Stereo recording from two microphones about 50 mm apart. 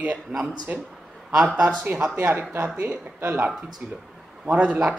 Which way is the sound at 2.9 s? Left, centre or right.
Right.